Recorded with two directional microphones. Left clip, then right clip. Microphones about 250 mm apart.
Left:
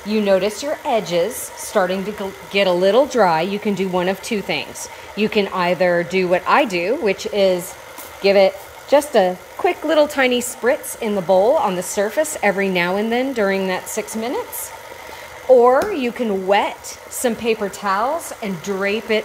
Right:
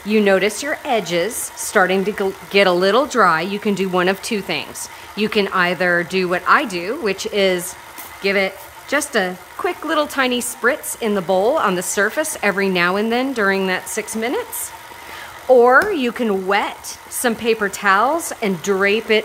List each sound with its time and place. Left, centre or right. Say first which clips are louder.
0.1 s a woman's voice: right 2 dB; centre
11.2 s a woman's voice: left 2 dB; right
12.2 s a woman's voice: left 1 dB; centre
15.9 s speech: right 2 dB; centre